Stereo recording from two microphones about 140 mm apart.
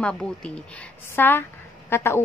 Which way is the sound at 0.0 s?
5° left (ahead or behind).